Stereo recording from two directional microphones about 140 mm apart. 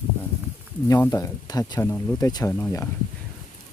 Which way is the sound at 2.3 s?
30° left (ahead or behind).